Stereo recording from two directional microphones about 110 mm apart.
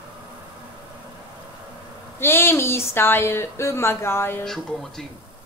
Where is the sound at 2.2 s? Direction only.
20° left (ahead or behind).